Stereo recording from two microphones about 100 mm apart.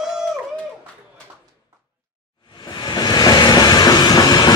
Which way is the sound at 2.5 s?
50° left (ahead or behind).